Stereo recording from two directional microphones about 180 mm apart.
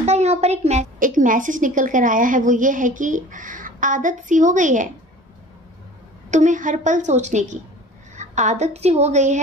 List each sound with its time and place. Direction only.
0.0 s a child's voice: 35° right (ahead or behind)
6.3 s a woman's voice: 45° right (ahead or behind)